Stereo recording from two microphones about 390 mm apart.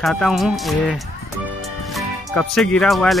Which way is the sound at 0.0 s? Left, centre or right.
Centre.